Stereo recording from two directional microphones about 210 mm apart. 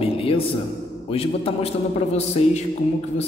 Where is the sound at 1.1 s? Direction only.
30° left (ahead or behind).